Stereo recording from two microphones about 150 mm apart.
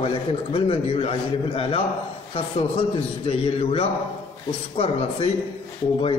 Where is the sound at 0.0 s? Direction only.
40° left (ahead or behind).